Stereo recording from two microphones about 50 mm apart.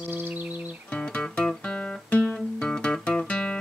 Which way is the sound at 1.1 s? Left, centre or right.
Left.